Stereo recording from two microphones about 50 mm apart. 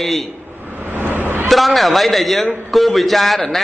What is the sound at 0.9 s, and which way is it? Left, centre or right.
Vehicle, right.